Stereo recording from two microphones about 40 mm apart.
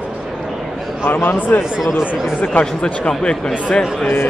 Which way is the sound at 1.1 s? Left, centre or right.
Left.